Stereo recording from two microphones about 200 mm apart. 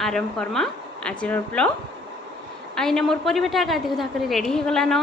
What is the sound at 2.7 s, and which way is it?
Speech, 5° left (ahead or behind).